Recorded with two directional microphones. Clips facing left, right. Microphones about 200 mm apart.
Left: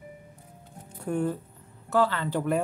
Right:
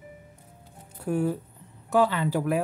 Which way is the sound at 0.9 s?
5° right (ahead or behind).